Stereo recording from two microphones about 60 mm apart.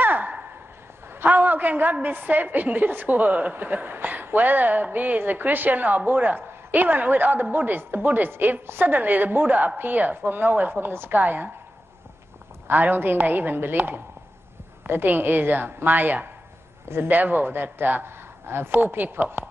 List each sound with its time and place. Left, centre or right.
0.0 s a sound: right
1.2 s a woman's voice: right
12.6 s a woman's voice: right
16.8 s a man's voice: right
17.1 s a woman's voice: right